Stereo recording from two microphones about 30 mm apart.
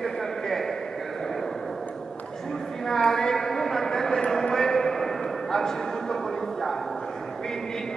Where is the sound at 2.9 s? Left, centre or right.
Centre.